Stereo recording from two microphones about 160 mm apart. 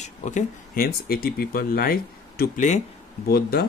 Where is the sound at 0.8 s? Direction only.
70° left (ahead or behind).